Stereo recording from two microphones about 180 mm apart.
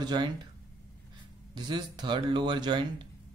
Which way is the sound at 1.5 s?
25° right (ahead or behind).